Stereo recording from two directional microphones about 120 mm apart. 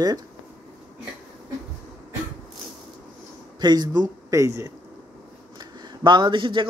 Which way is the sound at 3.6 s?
35° right (ahead or behind).